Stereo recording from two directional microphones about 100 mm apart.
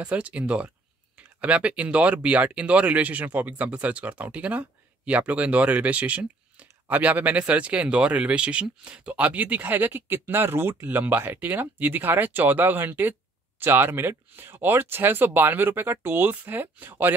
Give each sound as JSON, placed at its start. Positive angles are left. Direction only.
{"t": 0.0, "sound": "speech", "side_deg": -10}